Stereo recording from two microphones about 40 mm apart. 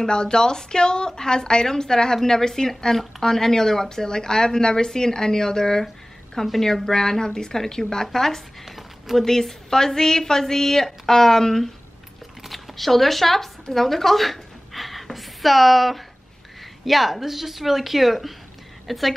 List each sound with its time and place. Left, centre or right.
0.0 s speech: centre
6.8 s speech: centre
8.6 s a sound: centre
9.2 s a woman's voice: centre